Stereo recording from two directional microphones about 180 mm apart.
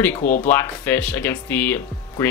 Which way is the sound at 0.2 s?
45° left (ahead or behind).